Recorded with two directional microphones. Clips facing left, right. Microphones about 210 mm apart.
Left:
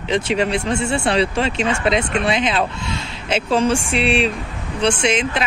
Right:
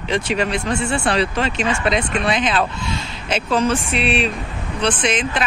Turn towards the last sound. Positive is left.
turn(degrees=25)  # may be behind; listen again after turning